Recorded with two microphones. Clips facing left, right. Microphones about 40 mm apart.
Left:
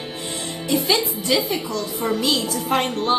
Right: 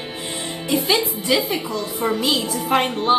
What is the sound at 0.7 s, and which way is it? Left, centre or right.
A woman's voice, centre.